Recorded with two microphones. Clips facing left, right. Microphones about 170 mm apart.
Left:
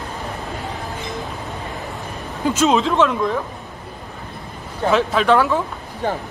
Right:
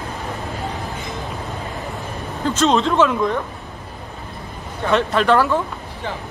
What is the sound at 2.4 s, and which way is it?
Speech, 10° left (ahead or behind).